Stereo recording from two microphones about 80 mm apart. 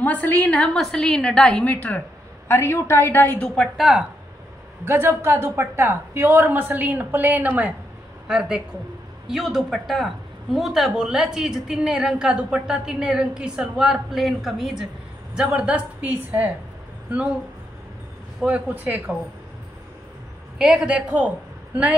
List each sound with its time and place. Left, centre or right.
0.0 s a woman's voice: left
0.6 s a woman's voice: centre
2.5 s a woman's voice: left
3.3 s a woman's voice: centre
4.8 s a woman's voice: right
8.3 s a woman's voice: centre
18.4 s a woman's voice: centre
20.5 s a man's voice: centre
20.9 s a woman's voice: right